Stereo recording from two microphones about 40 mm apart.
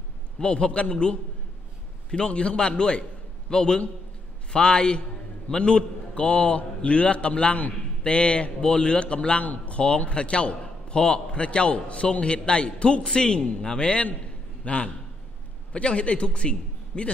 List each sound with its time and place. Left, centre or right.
0.4 s a man's voice: left
9.4 s a man's voice: left